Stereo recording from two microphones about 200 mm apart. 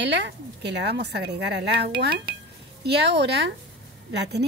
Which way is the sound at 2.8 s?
55° right (ahead or behind).